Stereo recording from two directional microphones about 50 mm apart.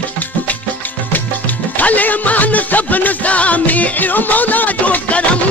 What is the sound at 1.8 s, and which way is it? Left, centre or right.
Music, left.